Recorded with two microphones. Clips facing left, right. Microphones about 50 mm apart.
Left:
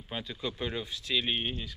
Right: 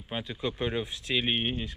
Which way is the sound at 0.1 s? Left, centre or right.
Centre.